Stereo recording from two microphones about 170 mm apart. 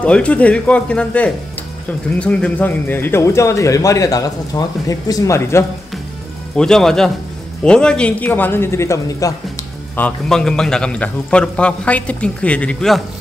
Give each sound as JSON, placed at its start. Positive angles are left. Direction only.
{"t": 0.0, "sound": "speech", "side_deg": 5}
{"t": 6.5, "sound": "speech", "side_deg": 5}
{"t": 9.9, "sound": "speech", "side_deg": 5}